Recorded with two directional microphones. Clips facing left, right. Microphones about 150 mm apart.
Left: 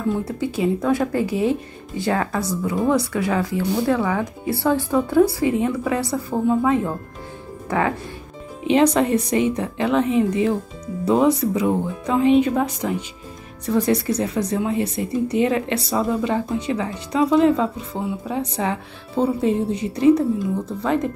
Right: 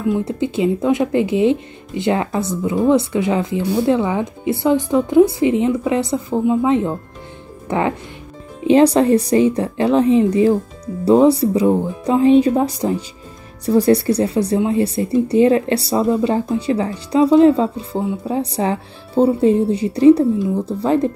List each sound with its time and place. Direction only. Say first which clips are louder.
0.0 s speech: right 4 dB; 20° right (ahead or behind)
8.6 s speech: right 5 dB; 35° right (ahead or behind)